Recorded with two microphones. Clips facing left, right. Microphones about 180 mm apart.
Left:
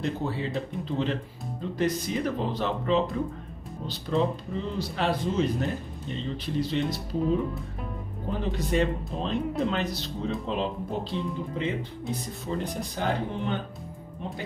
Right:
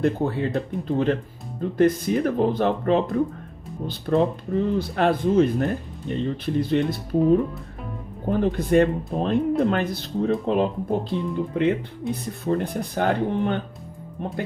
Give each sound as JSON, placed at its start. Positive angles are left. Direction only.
{"t": 0.0, "sound": "speech", "side_deg": -55}
{"t": 8.3, "sound": "speech", "side_deg": -55}